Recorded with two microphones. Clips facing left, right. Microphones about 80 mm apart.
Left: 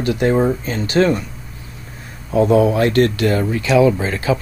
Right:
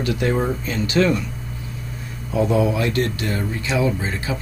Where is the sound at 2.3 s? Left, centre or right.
Left.